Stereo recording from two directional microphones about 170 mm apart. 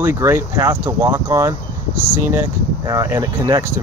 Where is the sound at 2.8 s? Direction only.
15° right (ahead or behind).